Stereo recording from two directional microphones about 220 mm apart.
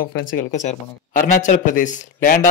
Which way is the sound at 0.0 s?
40° left (ahead or behind).